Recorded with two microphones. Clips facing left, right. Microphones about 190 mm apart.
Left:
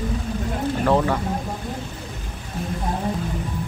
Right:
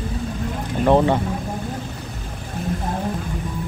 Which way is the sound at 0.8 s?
20° right (ahead or behind).